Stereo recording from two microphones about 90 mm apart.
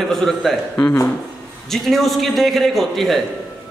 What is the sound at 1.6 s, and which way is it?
A man's voice, centre (ahead or behind).